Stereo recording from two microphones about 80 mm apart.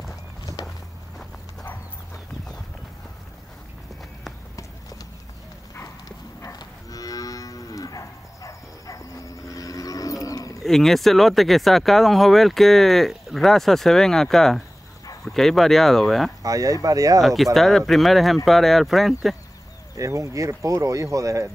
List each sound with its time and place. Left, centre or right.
6.0 s moo: left
10.6 s speech: centre
16.4 s speech: right
17.2 s speech: centre
20.0 s speech: right